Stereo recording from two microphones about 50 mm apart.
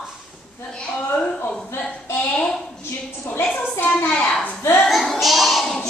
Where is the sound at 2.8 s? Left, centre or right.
Left.